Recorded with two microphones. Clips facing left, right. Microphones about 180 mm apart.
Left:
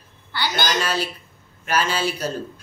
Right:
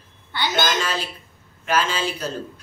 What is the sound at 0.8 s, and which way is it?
Speech, 10° left (ahead or behind).